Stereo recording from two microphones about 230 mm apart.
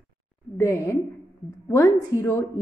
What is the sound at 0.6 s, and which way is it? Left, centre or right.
Speech, centre.